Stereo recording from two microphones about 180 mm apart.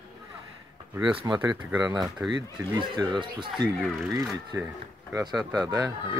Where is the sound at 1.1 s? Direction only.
25° right (ahead or behind).